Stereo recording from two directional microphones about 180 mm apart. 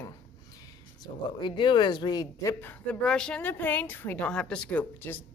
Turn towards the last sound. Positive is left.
turn(degrees=10)  # may be behind; listen again after turning